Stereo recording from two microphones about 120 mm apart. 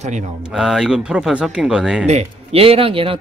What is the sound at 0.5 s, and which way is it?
Speech, 5° right (ahead or behind).